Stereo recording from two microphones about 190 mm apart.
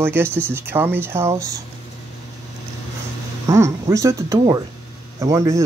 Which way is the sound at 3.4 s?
15° right (ahead or behind).